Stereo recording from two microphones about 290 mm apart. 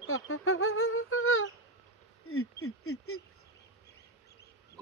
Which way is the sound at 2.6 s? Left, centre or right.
Left.